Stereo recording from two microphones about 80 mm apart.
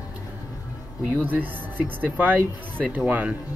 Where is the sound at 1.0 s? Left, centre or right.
Right.